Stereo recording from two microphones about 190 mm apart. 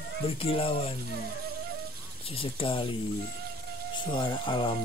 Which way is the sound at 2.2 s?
30° left (ahead or behind).